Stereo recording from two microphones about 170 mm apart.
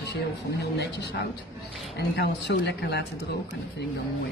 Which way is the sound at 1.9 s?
75° left (ahead or behind).